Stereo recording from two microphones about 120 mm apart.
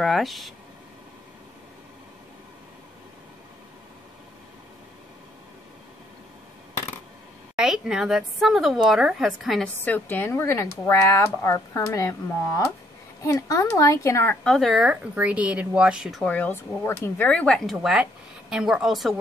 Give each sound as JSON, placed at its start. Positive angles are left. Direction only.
{"t": 0.0, "sound": "a woman's voice", "side_deg": 0}
{"t": 7.5, "sound": "a woman's voice", "side_deg": -5}
{"t": 9.8, "sound": "speech", "side_deg": 15}
{"t": 13.2, "sound": "speech", "side_deg": 25}
{"t": 14.3, "sound": "speech", "side_deg": 5}
{"t": 16.3, "sound": "speech", "side_deg": 15}
{"t": 17.3, "sound": "speech", "side_deg": 10}
{"t": 18.5, "sound": "a woman's voice", "side_deg": -5}